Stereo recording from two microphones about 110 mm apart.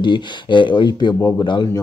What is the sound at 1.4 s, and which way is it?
Speech, 40° left (ahead or behind).